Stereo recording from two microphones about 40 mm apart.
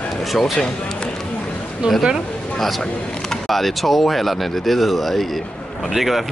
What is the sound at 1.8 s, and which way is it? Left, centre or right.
Speech, right.